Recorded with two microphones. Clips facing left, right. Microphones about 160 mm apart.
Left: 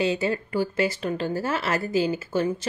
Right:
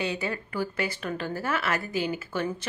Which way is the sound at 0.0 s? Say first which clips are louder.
Left 6 dB; 30° left (ahead or behind).